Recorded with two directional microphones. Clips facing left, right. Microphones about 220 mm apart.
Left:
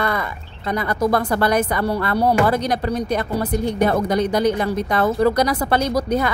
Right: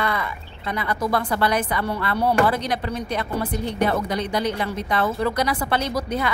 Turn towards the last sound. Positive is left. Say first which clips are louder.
# left 5 dB
turn(degrees=40)  # may be behind; listen again after turning